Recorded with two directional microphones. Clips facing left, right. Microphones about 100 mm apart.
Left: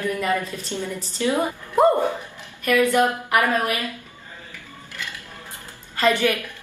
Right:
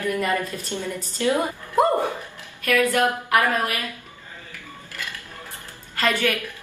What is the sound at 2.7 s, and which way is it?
Speech, 20° left (ahead or behind).